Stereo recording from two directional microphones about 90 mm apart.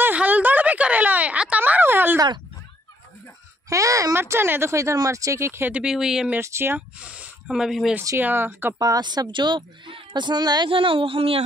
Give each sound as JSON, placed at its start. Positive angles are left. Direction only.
{"t": 0.0, "sound": "a sound", "side_deg": -15}
{"t": 3.6, "sound": "speech", "side_deg": -35}
{"t": 5.7, "sound": "speech", "side_deg": -10}
{"t": 6.4, "sound": "speech", "side_deg": -30}
{"t": 7.0, "sound": "speech", "side_deg": -15}
{"t": 8.2, "sound": "speech", "side_deg": -20}
{"t": 8.7, "sound": "speech", "side_deg": -45}
{"t": 10.7, "sound": "speech", "side_deg": -75}